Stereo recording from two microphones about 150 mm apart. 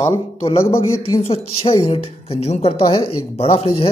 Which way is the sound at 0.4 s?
40° left (ahead or behind).